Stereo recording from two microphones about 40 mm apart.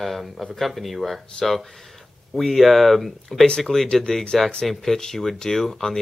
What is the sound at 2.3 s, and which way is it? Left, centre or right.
Speech, centre.